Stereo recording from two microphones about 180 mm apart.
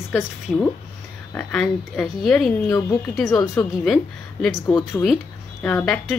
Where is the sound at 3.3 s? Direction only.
20° left (ahead or behind).